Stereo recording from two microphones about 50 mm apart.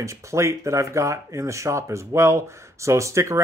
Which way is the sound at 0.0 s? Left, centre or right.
Right.